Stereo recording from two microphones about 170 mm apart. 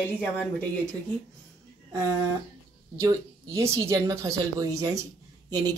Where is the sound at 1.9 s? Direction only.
20° right (ahead or behind).